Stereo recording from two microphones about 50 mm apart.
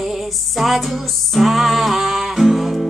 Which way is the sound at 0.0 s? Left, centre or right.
Centre.